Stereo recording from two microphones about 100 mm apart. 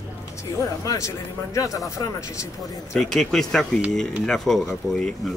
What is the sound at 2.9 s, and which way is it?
Speech, 5° left (ahead or behind).